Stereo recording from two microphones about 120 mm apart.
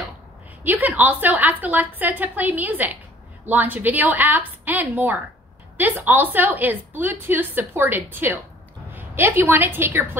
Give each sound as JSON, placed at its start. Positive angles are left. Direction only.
{"t": 0.7, "sound": "a woman's voice", "side_deg": -15}